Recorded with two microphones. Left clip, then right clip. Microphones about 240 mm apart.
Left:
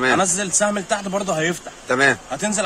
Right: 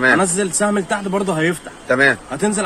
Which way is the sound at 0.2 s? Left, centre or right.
Centre.